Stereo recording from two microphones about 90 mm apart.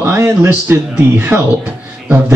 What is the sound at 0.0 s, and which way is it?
Speech, 20° right (ahead or behind).